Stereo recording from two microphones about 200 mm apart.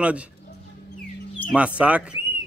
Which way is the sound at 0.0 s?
5° right (ahead or behind).